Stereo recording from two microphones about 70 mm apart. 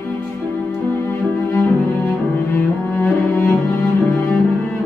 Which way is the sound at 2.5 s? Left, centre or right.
Left.